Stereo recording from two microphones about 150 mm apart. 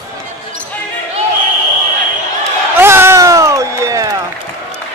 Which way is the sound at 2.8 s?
15° right (ahead or behind).